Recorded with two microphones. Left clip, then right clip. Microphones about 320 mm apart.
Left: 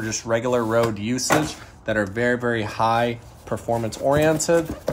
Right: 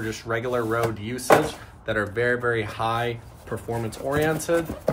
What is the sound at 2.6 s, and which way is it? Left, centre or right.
Speech, left.